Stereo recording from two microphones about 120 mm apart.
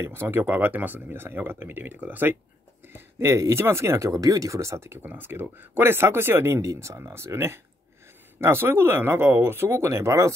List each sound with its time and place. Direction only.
0.0 s speech: 20° right (ahead or behind)